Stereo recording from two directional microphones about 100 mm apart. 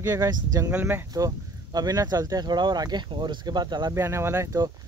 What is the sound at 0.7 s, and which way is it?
Speech, 15° right (ahead or behind).